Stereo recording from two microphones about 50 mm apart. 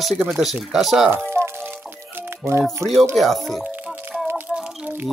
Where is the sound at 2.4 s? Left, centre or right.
Right.